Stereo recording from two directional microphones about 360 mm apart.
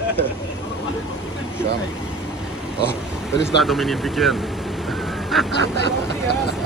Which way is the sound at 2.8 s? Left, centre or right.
Left.